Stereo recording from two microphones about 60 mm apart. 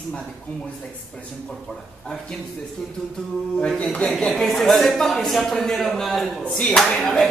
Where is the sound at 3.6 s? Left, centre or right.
Centre.